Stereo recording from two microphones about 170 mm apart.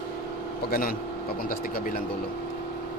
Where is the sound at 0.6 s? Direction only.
60° left (ahead or behind).